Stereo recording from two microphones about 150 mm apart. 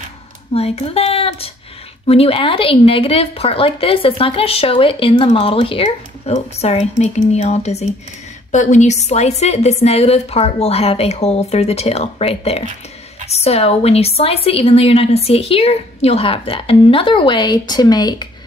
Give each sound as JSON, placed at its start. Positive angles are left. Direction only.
{"t": 0.6, "sound": "a woman's voice", "side_deg": 40}